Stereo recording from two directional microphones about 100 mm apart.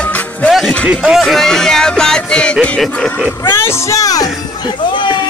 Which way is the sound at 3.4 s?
25° left (ahead or behind).